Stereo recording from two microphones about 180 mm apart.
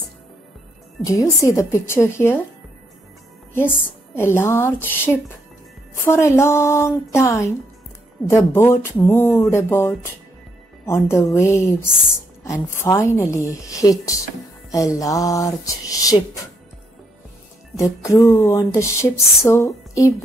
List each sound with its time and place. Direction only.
1.0 s music: 20° left (ahead or behind)
3.5 s music: 10° left (ahead or behind)
15.0 s a sound: 20° left (ahead or behind)
17.7 s music: 15° left (ahead or behind)